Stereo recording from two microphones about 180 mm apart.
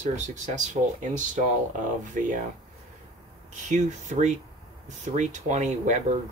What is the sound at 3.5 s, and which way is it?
Speech, 40° right (ahead or behind).